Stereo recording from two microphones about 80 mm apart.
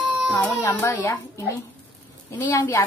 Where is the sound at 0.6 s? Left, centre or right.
Left.